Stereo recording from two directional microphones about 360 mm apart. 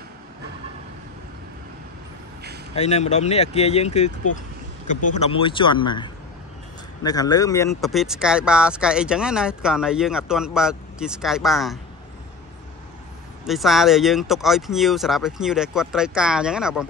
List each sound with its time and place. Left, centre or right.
2.7 s speech: centre
5.1 s speech: centre
13.5 s speech: centre